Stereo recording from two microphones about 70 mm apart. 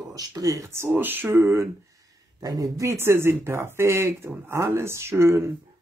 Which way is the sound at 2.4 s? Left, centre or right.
Right.